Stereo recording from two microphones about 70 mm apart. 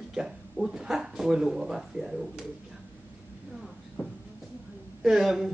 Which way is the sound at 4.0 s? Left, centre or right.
Centre.